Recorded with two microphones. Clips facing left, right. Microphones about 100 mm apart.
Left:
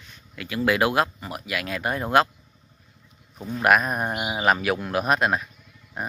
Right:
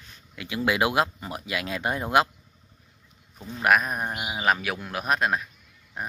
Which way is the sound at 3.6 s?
Centre (ahead or behind).